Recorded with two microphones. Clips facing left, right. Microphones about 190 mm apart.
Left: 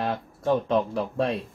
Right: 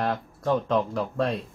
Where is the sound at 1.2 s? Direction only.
Centre (ahead or behind).